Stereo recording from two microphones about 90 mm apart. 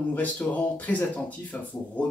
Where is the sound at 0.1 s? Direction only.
20° left (ahead or behind).